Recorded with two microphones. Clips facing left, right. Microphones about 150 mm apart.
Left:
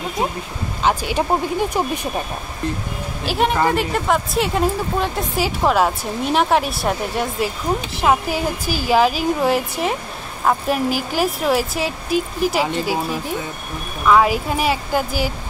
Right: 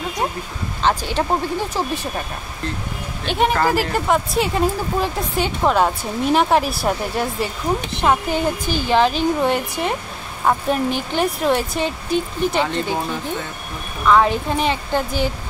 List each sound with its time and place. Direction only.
0.8 s speech: 10° left (ahead or behind)
3.3 s speech: centre (ahead or behind)